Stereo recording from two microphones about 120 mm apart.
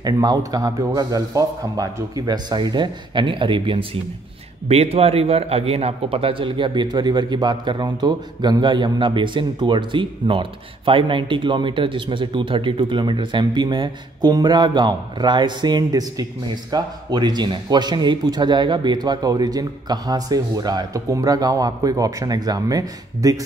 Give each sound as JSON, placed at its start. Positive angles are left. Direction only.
{"t": 0.0, "sound": "a man's voice", "side_deg": -30}
{"t": 4.6, "sound": "a man's voice", "side_deg": -60}